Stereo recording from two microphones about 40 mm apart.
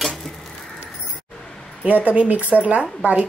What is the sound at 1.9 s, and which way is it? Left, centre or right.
Speech, right.